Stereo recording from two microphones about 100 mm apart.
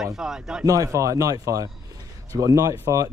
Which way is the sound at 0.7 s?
35° right (ahead or behind).